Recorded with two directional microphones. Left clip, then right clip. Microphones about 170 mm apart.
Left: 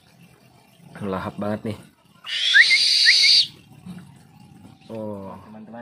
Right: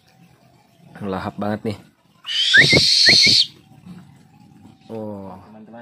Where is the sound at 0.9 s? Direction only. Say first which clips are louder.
Right 2 dB; 20° right (ahead or behind).